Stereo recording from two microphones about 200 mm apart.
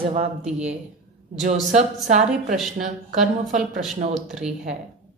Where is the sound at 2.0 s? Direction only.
40° right (ahead or behind).